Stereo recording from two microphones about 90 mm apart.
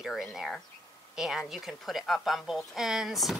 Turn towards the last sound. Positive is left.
turn(degrees=0)  # may be behind; listen again after turning